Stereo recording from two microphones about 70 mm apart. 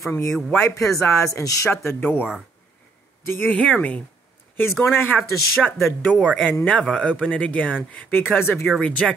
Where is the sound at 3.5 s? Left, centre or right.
Centre.